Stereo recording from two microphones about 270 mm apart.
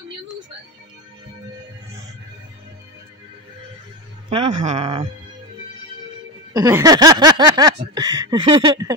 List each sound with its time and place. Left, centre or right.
4.3 s speech: right
6.5 s speech: centre